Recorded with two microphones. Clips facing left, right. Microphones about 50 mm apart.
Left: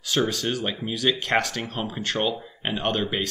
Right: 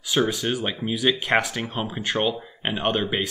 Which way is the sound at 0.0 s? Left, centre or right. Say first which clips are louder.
Right 2 dB; centre.